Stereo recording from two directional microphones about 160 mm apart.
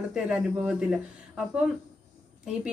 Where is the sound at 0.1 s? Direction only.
5° right (ahead or behind).